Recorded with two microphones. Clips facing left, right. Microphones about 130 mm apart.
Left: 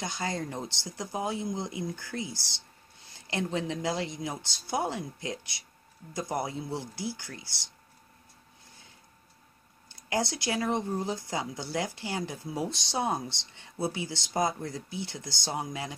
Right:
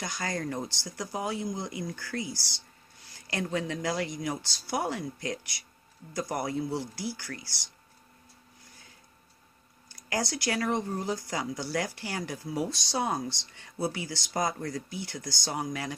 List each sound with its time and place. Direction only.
0.0 s speech: 25° left (ahead or behind)
9.9 s speech: 25° left (ahead or behind)